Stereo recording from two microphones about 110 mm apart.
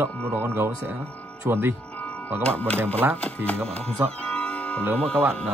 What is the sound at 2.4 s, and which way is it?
Speech, 10° left (ahead or behind).